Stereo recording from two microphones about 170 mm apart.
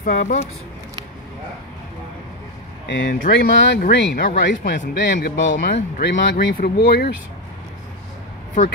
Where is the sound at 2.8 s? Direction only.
65° left (ahead or behind).